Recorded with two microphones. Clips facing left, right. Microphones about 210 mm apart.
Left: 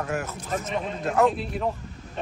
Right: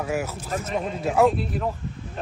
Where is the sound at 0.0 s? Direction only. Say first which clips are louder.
Right 3 dB; 10° right (ahead or behind).